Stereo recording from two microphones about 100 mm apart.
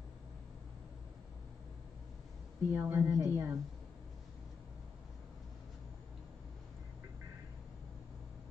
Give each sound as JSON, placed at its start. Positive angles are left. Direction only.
{"t": 2.7, "sound": "a woman's voice", "side_deg": -15}
{"t": 3.1, "sound": "a woman's voice", "side_deg": -30}